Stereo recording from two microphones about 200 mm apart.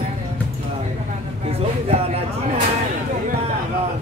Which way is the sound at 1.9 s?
30° right (ahead or behind).